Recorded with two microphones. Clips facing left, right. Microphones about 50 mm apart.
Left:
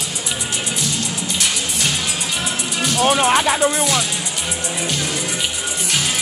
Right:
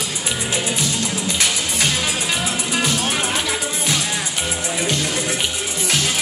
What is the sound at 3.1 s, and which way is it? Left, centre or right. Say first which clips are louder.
Music: left 7 dB; left.